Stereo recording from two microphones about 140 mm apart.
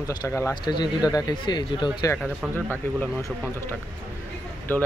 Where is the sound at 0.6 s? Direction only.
30° left (ahead or behind).